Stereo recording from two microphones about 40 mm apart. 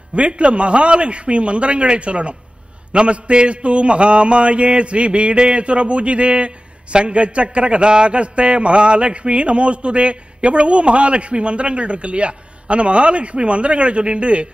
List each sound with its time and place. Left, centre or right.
0.1 s a man's voice: right